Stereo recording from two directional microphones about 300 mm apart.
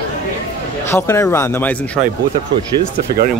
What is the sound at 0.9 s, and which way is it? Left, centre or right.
Speech, centre.